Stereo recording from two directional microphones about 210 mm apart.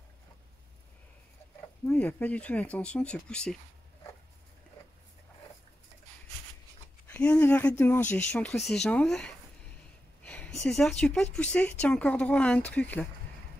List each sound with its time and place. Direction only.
1.9 s speech: 5° left (ahead or behind)
7.1 s speech: 5° left (ahead or behind)